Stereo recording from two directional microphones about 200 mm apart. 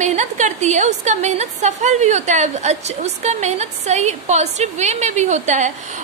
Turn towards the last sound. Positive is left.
turn(degrees=-35)  # may be behind; listen again after turning